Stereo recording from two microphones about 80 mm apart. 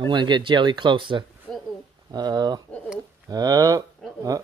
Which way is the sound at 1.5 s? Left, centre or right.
Centre.